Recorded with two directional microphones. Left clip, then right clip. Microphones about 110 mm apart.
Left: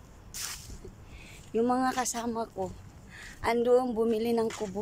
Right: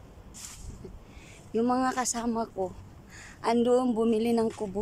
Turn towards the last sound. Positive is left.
turn(degrees=-15)  # may be behind; listen again after turning